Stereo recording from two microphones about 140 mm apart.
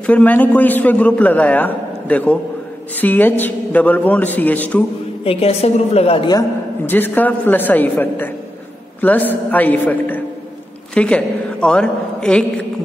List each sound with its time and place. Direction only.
0.0 s a man's voice: 10° left (ahead or behind)
5.2 s a woman's voice: 45° left (ahead or behind)
6.9 s a man's voice: 15° left (ahead or behind)